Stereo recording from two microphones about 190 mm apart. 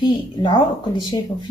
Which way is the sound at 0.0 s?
25° left (ahead or behind).